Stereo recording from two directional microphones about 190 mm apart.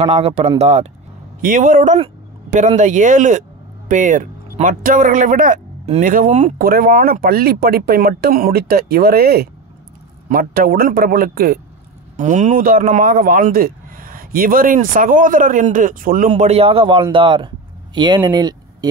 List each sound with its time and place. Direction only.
0.0 s speech: 35° right (ahead or behind)
6.6 s speech: 50° right (ahead or behind)
12.2 s speech: 40° right (ahead or behind)
16.3 s speech: 35° right (ahead or behind)